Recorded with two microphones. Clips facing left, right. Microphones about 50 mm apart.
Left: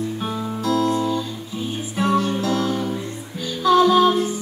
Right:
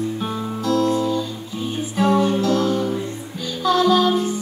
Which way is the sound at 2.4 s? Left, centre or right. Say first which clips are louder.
Right 3 dB; centre.